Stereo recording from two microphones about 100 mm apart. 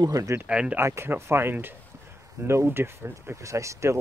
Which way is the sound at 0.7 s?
25° right (ahead or behind).